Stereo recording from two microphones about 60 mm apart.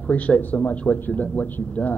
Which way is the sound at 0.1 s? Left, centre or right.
Left.